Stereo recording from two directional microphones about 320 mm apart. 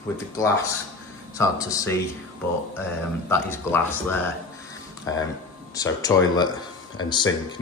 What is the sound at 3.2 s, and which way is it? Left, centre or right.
Speech, centre.